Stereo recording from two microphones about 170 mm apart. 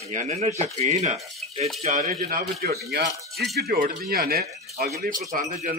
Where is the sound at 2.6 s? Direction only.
70° right (ahead or behind).